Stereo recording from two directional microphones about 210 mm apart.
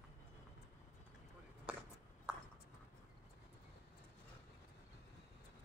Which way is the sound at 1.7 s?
5° right (ahead or behind).